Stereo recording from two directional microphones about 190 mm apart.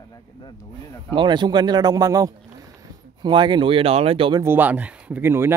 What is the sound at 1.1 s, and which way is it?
Speech, 25° right (ahead or behind).